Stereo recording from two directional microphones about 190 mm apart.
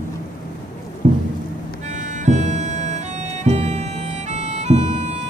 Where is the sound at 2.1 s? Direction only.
40° right (ahead or behind).